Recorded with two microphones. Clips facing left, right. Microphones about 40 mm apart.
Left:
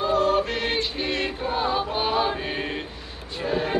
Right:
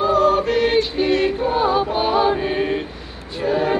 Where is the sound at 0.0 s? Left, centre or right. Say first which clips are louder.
Right 5 dB; centre.